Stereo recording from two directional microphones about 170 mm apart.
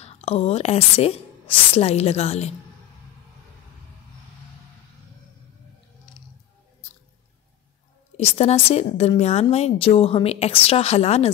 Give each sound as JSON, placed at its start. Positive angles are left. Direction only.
{"t": 0.0, "sound": "a woman's voice", "side_deg": 35}
{"t": 8.2, "sound": "a woman's voice", "side_deg": 35}